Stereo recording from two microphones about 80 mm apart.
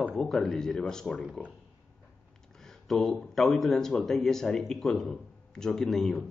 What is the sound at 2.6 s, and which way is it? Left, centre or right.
Speech, centre.